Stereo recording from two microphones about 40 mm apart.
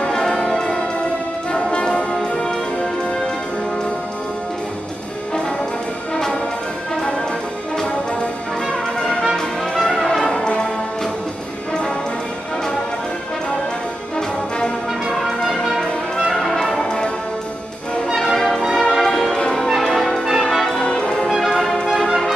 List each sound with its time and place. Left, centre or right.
0.1 s music: centre
1.5 s brass instrument: left
9.0 s brass instrument: centre
15.0 s brass instrument: centre
18.7 s music: centre
19.7 s music: centre
20.4 s brass instrument: centre
21.4 s music: centre